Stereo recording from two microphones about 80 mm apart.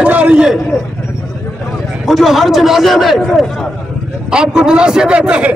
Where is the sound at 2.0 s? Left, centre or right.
Centre.